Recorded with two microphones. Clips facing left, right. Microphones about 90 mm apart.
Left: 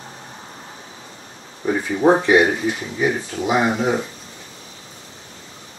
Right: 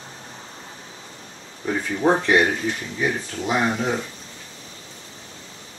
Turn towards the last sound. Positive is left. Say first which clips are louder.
# left 4 dB
turn(degrees=10)  # may be behind; listen again after turning